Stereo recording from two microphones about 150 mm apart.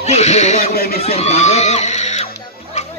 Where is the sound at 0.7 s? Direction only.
90° left.